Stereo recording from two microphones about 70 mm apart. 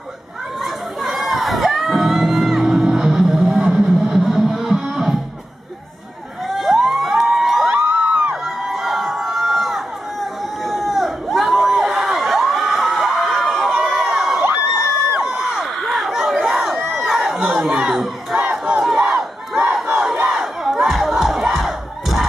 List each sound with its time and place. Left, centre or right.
0.6 s crowd: centre
2.8 s music: centre
6.4 s crowd: centre
7.6 s a sound: right
8.5 s crowd: centre
11.8 s a sound: centre
13.7 s run: centre
15.1 s a sound: centre
16.4 s crowd: centre
18.8 s battle cry: centre
20.2 s crowd: centre